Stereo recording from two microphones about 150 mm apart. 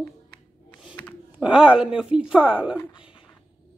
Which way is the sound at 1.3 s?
5° right (ahead or behind).